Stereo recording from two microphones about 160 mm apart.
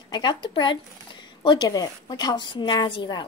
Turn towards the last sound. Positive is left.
turn(degrees=30)  # may be behind; listen again after turning